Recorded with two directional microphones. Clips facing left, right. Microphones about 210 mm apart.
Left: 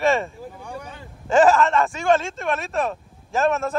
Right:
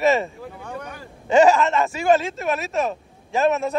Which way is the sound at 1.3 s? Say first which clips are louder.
Right 1 dB; centre (ahead or behind).